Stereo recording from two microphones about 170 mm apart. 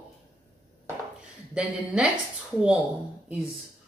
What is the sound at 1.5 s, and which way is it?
Speech, 5° right (ahead or behind).